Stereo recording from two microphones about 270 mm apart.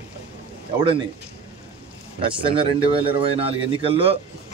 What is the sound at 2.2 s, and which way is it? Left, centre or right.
Speech, centre.